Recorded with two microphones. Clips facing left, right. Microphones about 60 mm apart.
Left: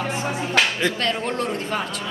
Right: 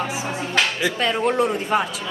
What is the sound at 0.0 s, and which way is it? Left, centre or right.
Speech, centre.